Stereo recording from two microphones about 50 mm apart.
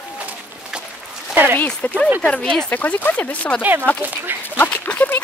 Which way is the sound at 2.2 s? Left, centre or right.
Left.